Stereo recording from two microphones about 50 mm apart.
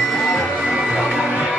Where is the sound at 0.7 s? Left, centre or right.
Centre.